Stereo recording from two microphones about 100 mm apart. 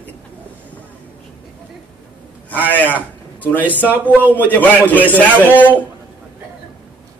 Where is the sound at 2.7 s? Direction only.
15° left (ahead or behind).